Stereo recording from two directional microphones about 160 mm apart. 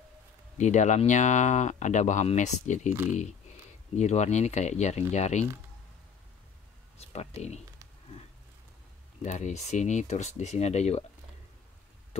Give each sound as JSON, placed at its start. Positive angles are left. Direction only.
{"t": 0.6, "sound": "speech", "side_deg": 50}
{"t": 7.0, "sound": "speech", "side_deg": 40}
{"t": 9.2, "sound": "speech", "side_deg": 45}